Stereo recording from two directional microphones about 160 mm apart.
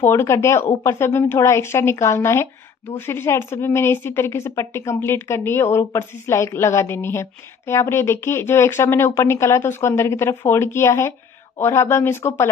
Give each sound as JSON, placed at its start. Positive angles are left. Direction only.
{"t": 0.0, "sound": "a woman's voice", "side_deg": 15}